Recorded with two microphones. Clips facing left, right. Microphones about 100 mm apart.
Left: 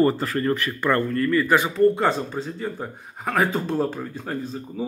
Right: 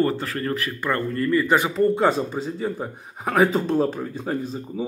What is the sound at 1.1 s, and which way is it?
Speech, 20° right (ahead or behind).